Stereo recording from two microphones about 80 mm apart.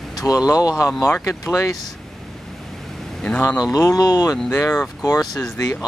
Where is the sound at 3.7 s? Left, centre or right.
Left.